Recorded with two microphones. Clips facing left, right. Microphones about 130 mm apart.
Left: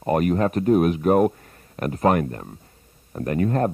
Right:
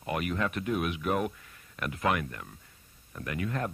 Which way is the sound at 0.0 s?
40° left (ahead or behind).